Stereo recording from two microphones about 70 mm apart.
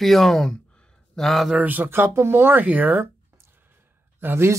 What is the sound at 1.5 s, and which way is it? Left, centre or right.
Speech, right.